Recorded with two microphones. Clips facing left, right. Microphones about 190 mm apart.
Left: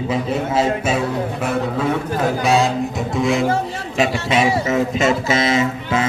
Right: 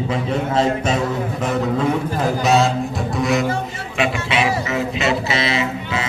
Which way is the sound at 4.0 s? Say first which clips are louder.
Left 2 dB; 45° left (ahead or behind).